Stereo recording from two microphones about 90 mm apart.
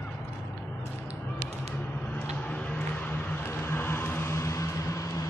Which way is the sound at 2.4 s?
15° left (ahead or behind).